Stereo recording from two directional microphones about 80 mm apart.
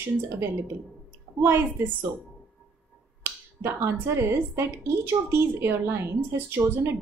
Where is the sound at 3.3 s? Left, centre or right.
Right.